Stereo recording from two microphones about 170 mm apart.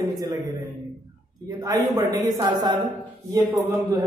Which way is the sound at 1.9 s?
20° right (ahead or behind).